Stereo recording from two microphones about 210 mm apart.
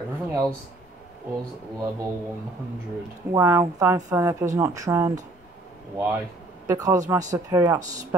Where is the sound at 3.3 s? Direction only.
10° right (ahead or behind).